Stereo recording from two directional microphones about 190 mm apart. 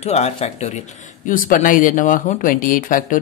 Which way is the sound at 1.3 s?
45° left (ahead or behind).